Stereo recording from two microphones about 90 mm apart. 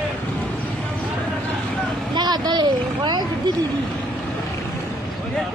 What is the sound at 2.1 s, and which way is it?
Speech, 50° right (ahead or behind).